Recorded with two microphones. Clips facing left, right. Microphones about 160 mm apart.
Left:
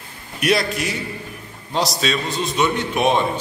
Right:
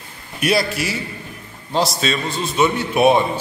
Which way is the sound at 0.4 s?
5° right (ahead or behind).